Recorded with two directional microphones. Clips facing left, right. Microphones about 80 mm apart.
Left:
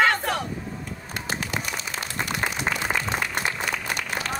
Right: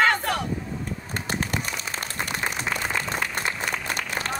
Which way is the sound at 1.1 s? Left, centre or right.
Right.